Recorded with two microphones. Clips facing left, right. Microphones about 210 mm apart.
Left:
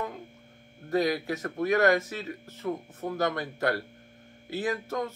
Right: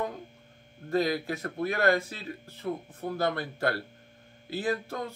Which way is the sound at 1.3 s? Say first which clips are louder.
Left 4 dB; 40° left (ahead or behind).